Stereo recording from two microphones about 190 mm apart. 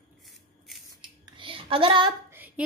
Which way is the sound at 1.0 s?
25° right (ahead or behind).